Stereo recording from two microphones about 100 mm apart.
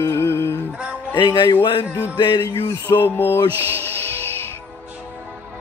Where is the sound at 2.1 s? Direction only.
50° left (ahead or behind).